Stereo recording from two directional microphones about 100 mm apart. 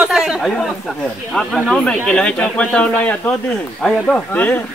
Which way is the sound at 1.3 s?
15° left (ahead or behind).